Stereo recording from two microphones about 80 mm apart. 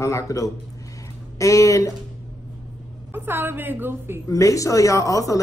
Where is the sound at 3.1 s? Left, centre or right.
Right.